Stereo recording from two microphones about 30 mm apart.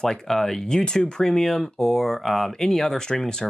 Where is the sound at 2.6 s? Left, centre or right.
Centre.